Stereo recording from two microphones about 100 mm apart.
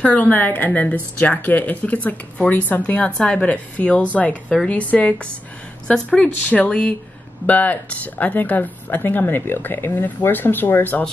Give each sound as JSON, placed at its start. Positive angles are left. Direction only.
{"t": 0.0, "sound": "a woman's voice", "side_deg": 15}